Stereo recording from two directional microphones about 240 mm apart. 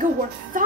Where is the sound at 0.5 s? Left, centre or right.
Right.